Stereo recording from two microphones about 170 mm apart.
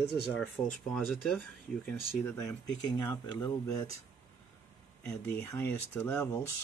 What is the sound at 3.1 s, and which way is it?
Speech, 25° left (ahead or behind).